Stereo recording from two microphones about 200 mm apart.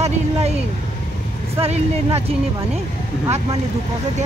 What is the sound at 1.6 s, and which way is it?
Speech, 30° right (ahead or behind).